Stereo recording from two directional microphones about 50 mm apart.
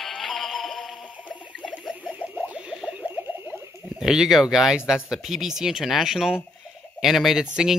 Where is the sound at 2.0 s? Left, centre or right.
Right.